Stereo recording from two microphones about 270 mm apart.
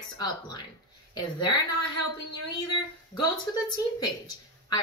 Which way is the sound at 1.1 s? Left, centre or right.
Centre.